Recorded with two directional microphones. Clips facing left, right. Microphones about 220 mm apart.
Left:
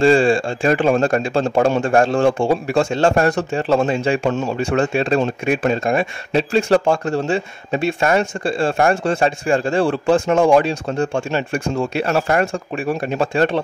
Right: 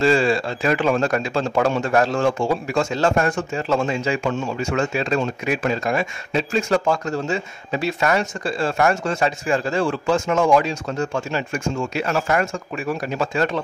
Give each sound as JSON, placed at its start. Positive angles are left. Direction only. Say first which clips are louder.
{"t": 0.0, "sound": "speech", "louder": "left 4 dB", "side_deg": 30}